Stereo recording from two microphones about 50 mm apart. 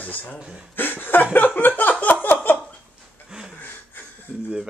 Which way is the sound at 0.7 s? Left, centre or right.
Left.